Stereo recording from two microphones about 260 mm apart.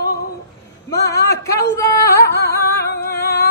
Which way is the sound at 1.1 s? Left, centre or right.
Centre.